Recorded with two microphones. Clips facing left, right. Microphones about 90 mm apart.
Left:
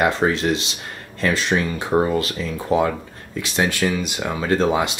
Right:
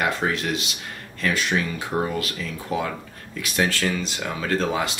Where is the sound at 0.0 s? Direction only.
25° left (ahead or behind).